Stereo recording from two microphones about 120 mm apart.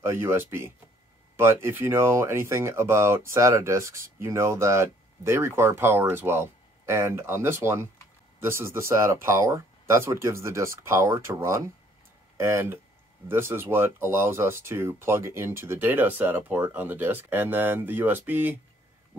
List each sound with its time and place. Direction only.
0.0 s speech: 20° right (ahead or behind)